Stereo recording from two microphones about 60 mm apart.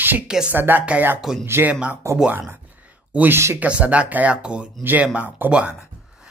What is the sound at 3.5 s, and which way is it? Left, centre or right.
Speech, right.